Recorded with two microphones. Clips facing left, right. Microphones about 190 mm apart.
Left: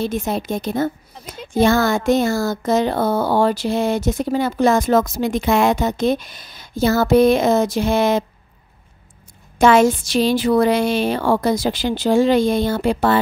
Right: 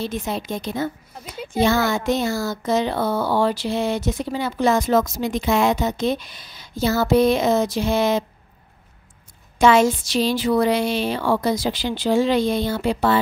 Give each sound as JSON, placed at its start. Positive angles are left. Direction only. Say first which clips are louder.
{"t": 0.0, "sound": "speech", "louder": "left 4 dB", "side_deg": 50}
{"t": 9.6, "sound": "speech", "louder": "left 2 dB", "side_deg": 50}